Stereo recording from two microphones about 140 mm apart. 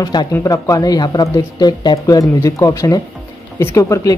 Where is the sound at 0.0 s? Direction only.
25° left (ahead or behind).